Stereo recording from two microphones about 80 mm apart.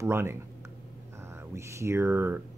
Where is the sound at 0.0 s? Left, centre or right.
Right.